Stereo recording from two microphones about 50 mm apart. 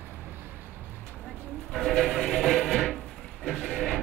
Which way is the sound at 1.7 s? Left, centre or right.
Centre.